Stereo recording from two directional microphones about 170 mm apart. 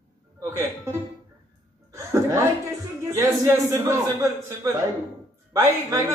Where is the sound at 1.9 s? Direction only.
15° right (ahead or behind).